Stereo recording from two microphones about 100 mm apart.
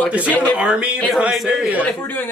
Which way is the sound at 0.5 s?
10° right (ahead or behind).